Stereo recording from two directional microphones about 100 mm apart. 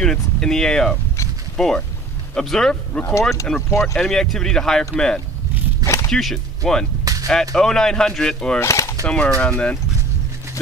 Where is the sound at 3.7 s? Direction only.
30° left (ahead or behind).